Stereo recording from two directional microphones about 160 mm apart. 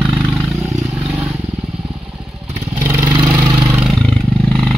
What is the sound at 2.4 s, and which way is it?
Vehicle, 20° right (ahead or behind).